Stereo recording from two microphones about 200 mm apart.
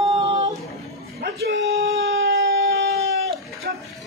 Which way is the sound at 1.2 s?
50° right (ahead or behind).